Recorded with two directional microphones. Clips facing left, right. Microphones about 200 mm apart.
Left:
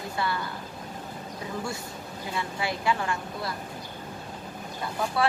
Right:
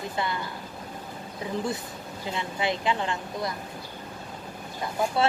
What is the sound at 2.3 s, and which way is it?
Speech, 20° right (ahead or behind).